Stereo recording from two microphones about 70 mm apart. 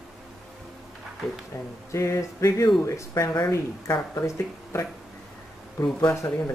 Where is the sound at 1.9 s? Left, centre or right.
Left.